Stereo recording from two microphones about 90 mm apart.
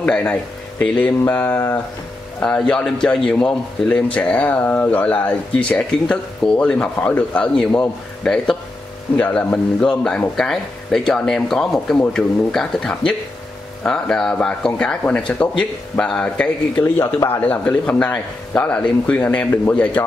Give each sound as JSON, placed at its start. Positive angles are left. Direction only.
{"t": 0.0, "sound": "speech", "side_deg": 10}
{"t": 0.9, "sound": "a sound", "side_deg": 20}
{"t": 2.4, "sound": "speech", "side_deg": 10}